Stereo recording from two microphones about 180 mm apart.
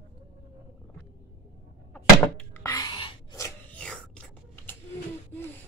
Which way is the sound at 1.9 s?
10° left (ahead or behind).